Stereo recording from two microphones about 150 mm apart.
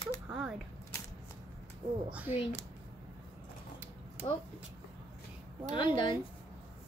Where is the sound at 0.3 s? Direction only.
5° right (ahead or behind).